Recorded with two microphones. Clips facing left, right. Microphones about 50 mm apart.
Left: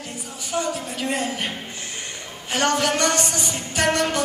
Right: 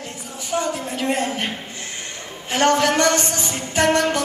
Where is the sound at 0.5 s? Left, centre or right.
Right.